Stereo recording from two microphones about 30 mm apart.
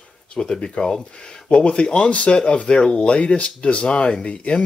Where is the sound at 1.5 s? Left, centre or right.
Left.